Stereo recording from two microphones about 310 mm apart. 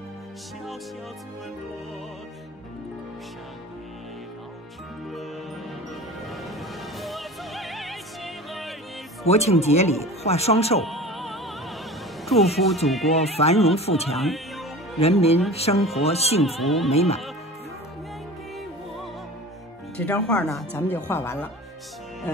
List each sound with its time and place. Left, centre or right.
7.0 s music: centre
9.2 s speech: centre
10.8 s music: centre
12.5 s speech: centre
13.2 s speech: centre
14.1 s speech: centre
15.0 s speech: centre
16.5 s speech: centre
16.9 s speech: centre
20.0 s speech: centre